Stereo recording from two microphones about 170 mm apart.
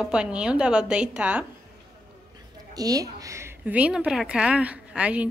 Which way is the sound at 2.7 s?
20° right (ahead or behind).